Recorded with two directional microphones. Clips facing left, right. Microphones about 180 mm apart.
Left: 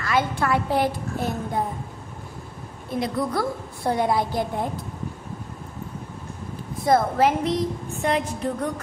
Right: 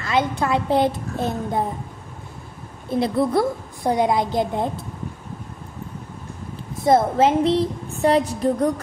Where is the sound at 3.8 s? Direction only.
15° right (ahead or behind).